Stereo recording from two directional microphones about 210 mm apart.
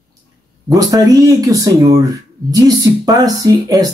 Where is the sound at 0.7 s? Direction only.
15° right (ahead or behind).